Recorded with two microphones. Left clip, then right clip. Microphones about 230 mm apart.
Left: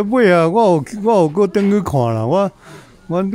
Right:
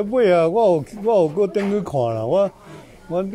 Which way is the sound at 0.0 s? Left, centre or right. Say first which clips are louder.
Left 3 dB; left.